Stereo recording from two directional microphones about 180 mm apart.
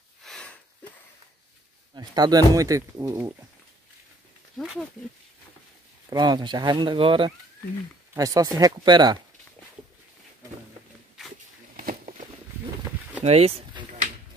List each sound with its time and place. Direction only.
0.2 s sniff: 5° left (ahead or behind)
2.0 s speech: 20° right (ahead or behind)
4.6 s speech: centre (ahead or behind)
6.0 s speech: 25° right (ahead or behind)
11.7 s a sound: 45° right (ahead or behind)